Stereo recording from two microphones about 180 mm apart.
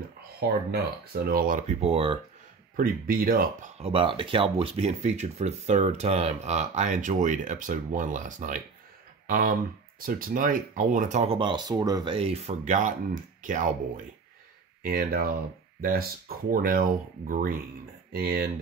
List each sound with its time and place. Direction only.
0.4 s speech: 60° right (ahead or behind); by 2.1 s 30° right (ahead or behind)
2.7 s speech: 50° right (ahead or behind)
3.7 s speech: 35° right (ahead or behind)
14.8 s speech: 55° right (ahead or behind)